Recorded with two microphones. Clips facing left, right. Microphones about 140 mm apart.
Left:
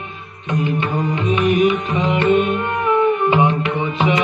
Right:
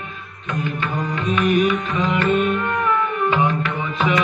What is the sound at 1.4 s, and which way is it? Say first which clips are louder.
Music: left 2 dB; 25° left (ahead or behind).